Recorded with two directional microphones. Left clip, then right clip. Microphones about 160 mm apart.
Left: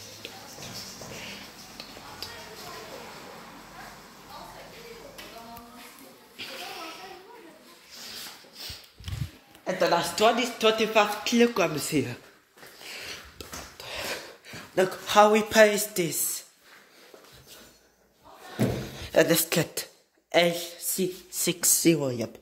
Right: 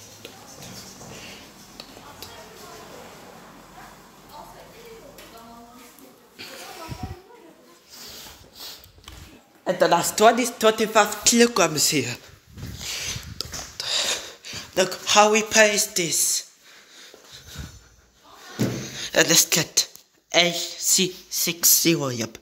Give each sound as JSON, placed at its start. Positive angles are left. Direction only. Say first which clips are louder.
{"t": 9.7, "sound": "speech", "louder": "right 5 dB", "side_deg": -50}
{"t": 11.3, "sound": "speech", "louder": "right 4 dB", "side_deg": -15}
{"t": 11.9, "sound": "speech", "louder": "right 4 dB", "side_deg": 5}
{"t": 12.8, "sound": "a sound", "louder": "right 8 dB", "side_deg": 0}
{"t": 18.9, "sound": "speech", "louder": "right 4 dB", "side_deg": 5}
{"t": 22.0, "sound": "speech", "louder": "right 2 dB", "side_deg": -5}